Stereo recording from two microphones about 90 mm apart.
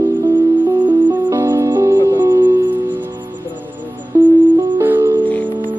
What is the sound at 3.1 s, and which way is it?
Music, 55° right (ahead or behind).